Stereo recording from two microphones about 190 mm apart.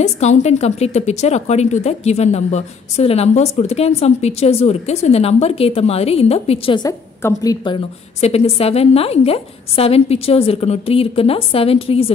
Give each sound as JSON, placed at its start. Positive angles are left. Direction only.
{"t": 0.0, "sound": "a woman's voice", "side_deg": 35}
{"t": 7.6, "sound": "a woman's voice", "side_deg": 30}